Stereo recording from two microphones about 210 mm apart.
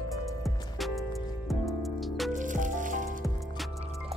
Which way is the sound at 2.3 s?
40° right (ahead or behind).